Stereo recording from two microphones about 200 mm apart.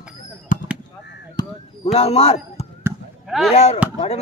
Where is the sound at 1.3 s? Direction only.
30° left (ahead or behind).